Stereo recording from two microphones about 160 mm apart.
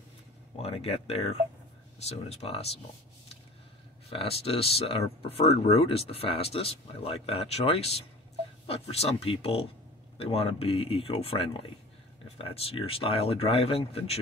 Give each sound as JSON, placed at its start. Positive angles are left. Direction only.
{"t": 0.6, "sound": "speech", "side_deg": 40}
{"t": 4.1, "sound": "speech", "side_deg": 35}